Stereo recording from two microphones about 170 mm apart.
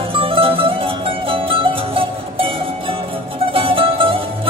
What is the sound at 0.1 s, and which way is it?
Music, 30° right (ahead or behind).